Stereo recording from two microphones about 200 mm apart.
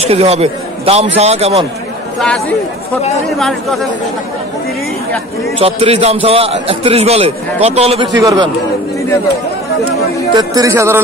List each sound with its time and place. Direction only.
0.0 s a man's voice: 30° right (ahead or behind)
3.3 s speech: centre (ahead or behind)
5.6 s a man's voice: 30° right (ahead or behind)
8.2 s speech: 20° right (ahead or behind)
10.3 s speech: 15° right (ahead or behind)